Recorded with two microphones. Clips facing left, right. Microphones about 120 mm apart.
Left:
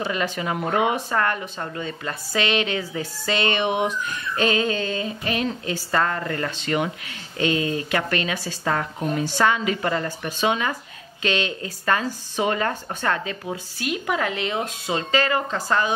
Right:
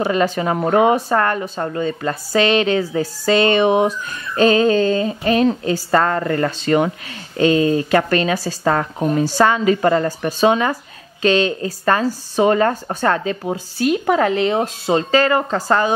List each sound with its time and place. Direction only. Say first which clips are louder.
0.0 s speech: right 8 dB; 40° right (ahead or behind)